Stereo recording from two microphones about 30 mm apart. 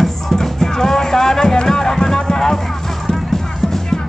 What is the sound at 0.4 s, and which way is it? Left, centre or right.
Music, centre.